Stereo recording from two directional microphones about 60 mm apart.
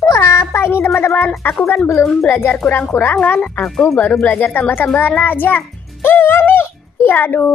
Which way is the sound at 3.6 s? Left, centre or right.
Centre.